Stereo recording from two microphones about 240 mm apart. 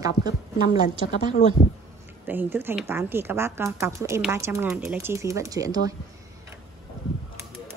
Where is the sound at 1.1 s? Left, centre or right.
Left.